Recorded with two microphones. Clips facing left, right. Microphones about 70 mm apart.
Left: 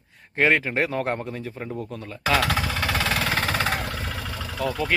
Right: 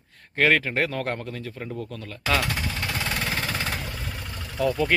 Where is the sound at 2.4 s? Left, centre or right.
Left.